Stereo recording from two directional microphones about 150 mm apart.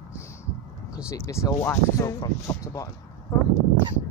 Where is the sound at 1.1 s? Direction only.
20° left (ahead or behind).